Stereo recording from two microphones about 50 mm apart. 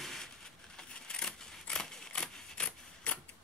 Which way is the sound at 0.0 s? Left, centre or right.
Centre.